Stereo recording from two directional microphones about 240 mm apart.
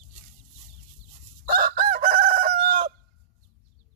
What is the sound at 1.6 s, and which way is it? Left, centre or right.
Chicken, right.